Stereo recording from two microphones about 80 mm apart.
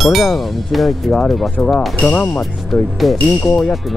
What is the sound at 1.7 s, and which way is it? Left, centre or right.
Speech, centre.